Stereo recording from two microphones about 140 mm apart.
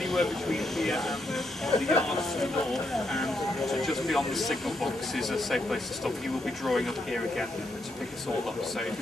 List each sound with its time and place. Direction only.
0.0 s speech: centre (ahead or behind)